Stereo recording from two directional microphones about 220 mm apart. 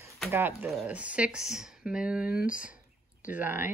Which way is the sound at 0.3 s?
10° right (ahead or behind).